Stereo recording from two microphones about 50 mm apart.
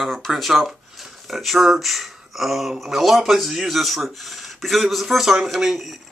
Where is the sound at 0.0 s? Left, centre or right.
Centre.